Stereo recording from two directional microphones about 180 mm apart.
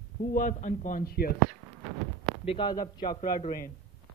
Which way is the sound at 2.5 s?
25° left (ahead or behind).